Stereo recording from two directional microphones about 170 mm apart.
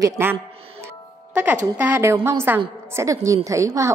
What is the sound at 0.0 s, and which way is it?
Speech, 15° right (ahead or behind).